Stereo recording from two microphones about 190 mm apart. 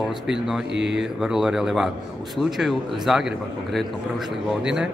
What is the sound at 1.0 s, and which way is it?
A man's voice, 5° right (ahead or behind).